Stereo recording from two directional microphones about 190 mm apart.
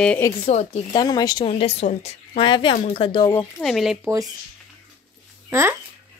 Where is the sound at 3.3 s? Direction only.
10° left (ahead or behind).